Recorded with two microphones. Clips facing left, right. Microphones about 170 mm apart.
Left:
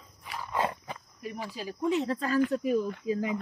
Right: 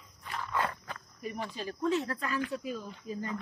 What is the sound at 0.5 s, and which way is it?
Walk, 25° left (ahead or behind).